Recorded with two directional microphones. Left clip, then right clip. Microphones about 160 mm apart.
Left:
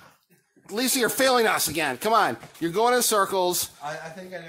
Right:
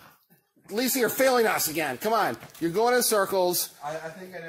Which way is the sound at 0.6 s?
Centre (ahead or behind).